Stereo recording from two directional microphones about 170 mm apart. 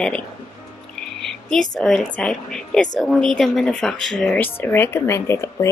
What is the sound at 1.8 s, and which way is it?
Speech, 5° left (ahead or behind).